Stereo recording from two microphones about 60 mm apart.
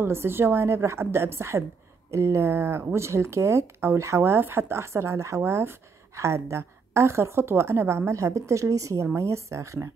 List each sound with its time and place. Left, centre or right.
0.0 s speech: right
9.0 s speech: right